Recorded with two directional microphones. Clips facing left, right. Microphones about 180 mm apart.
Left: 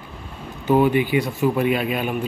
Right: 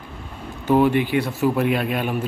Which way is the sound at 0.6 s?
Centre (ahead or behind).